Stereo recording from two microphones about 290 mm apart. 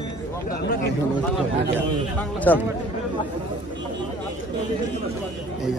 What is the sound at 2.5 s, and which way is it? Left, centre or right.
Speech, centre.